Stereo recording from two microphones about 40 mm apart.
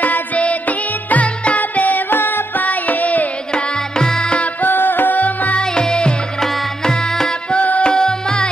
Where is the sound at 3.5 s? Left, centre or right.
Left.